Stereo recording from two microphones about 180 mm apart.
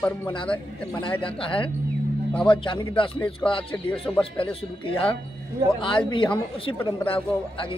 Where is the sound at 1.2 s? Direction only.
30° left (ahead or behind).